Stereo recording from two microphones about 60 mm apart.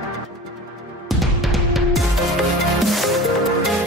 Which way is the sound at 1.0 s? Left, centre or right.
Centre.